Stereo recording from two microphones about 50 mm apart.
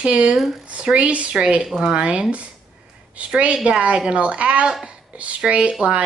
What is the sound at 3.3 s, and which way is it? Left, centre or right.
A woman's voice, right.